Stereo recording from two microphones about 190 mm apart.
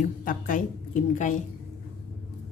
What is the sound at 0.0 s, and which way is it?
A woman's voice, 45° left (ahead or behind).